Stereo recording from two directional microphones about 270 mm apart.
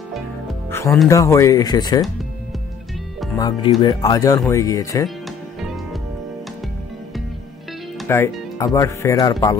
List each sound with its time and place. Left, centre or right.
0.1 s speech: centre
3.3 s speech: centre
8.0 s speech: centre